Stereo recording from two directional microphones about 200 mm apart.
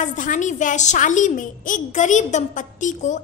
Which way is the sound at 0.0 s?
40° left (ahead or behind).